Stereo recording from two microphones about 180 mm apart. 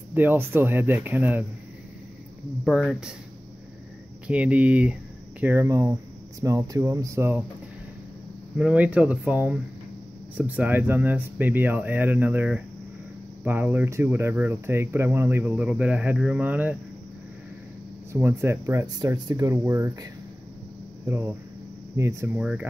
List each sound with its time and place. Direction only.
0.1 s speech: 10° right (ahead or behind)
2.6 s speech: centre (ahead or behind)
4.3 s speech: 5° right (ahead or behind)
8.5 s speech: 5° right (ahead or behind)
18.1 s speech: 15° right (ahead or behind)